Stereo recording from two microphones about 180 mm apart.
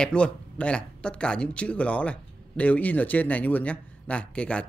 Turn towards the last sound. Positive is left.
turn(degrees=5)  # may be behind; listen again after turning